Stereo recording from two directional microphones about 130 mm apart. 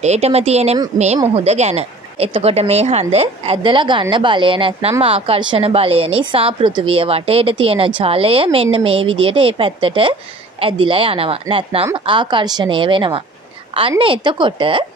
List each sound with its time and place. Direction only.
0.0 s a woman's voice: 55° right (ahead or behind)